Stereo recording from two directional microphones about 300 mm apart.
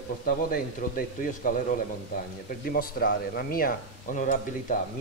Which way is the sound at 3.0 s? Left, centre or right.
Left.